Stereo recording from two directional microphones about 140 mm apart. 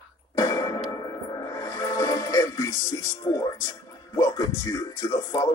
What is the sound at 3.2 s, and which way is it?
Speech, 25° left (ahead or behind).